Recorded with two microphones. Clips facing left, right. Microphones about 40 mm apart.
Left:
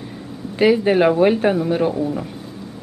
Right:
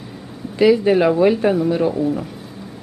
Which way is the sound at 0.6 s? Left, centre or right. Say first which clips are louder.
Right 1 dB; left.